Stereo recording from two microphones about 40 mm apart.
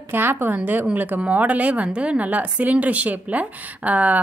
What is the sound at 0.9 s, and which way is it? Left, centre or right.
Speech, right.